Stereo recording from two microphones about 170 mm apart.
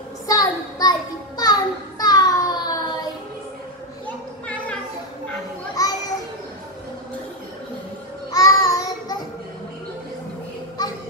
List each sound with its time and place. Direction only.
0.3 s a sound: 20° left (ahead or behind)
5.8 s children playing: 20° left (ahead or behind)
8.3 s child singing: 20° left (ahead or behind)
10.8 s children playing: 20° left (ahead or behind)